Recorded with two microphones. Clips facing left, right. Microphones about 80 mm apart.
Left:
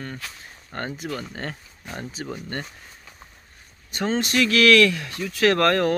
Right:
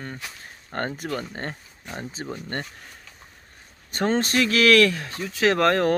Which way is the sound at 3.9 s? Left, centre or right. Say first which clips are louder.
Right 2 dB; right.